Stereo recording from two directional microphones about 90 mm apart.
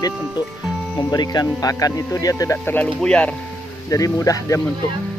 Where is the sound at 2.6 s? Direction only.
20° left (ahead or behind).